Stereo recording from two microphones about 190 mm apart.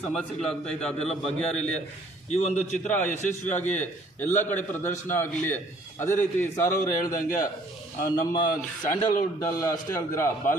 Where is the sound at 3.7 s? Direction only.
10° left (ahead or behind).